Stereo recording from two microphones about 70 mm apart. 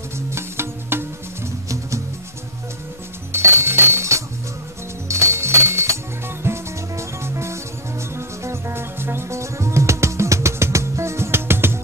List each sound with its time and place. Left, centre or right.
0.3 s music: right
3.3 s music: right